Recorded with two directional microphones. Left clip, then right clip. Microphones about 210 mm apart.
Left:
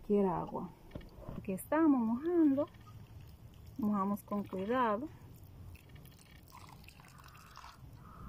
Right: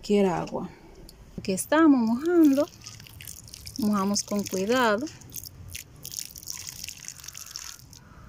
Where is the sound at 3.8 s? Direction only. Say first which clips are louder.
Right 9 dB; 30° right (ahead or behind).